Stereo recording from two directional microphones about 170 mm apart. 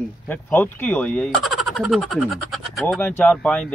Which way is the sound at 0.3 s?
10° left (ahead or behind).